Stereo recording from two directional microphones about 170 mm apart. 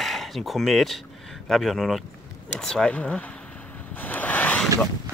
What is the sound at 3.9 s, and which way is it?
Ocean, 10° left (ahead or behind).